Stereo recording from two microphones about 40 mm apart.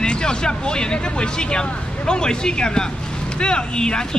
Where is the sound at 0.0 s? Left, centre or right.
Left.